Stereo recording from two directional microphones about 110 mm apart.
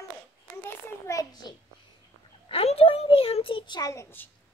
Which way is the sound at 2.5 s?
60° left (ahead or behind).